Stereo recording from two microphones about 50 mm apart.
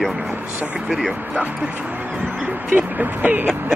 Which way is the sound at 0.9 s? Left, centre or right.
Centre.